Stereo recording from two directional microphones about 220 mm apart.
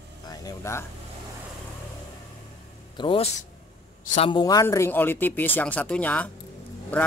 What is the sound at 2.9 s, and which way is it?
Speech, 20° left (ahead or behind).